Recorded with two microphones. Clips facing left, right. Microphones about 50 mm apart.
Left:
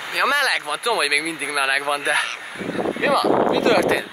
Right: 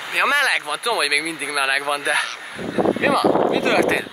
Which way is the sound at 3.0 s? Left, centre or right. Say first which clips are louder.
Left 2 dB; centre.